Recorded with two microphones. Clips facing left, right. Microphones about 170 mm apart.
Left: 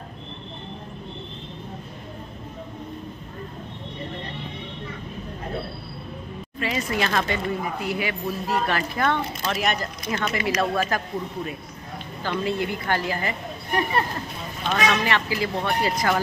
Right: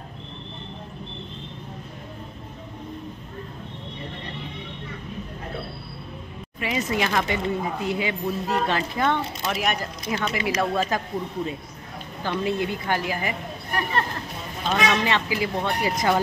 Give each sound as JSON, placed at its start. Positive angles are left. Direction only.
{"t": 6.6, "sound": "speech", "side_deg": -15}
{"t": 12.2, "sound": "speech", "side_deg": -20}
{"t": 14.7, "sound": "speech", "side_deg": -20}